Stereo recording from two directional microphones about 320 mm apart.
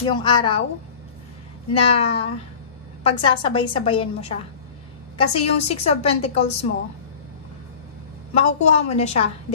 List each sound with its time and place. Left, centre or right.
0.0 s a woman's voice: centre
1.7 s a woman's voice: centre
8.4 s a woman's voice: centre